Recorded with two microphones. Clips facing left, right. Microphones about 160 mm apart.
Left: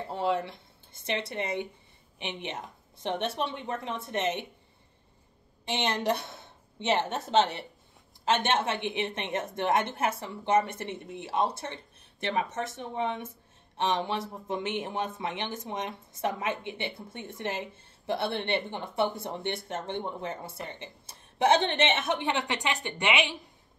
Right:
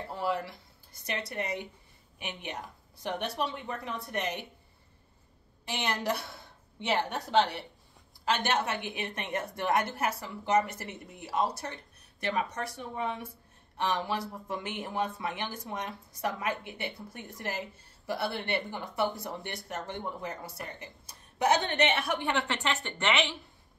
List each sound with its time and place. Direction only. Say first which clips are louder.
0.1 s speech: left 4 dB; 25° left (ahead or behind)
5.7 s a woman's voice: left 3 dB; 20° left (ahead or behind)